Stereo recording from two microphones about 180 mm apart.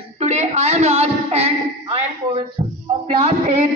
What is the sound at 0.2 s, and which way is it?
Speech, 35° right (ahead or behind).